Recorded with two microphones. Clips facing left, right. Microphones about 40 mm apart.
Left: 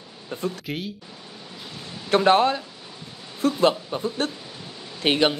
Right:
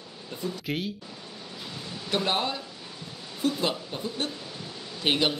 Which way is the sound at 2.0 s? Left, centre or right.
Left.